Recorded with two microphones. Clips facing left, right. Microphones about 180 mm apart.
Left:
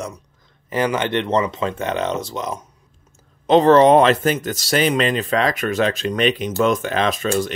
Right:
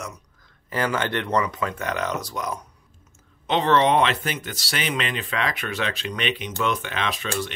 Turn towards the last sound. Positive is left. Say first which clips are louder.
# left 8 dB
turn(degrees=45)  # may be behind; listen again after turning